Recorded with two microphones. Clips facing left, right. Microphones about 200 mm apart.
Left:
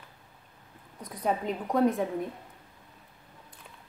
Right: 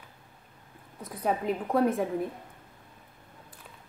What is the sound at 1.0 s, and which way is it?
A woman's voice, 5° right (ahead or behind).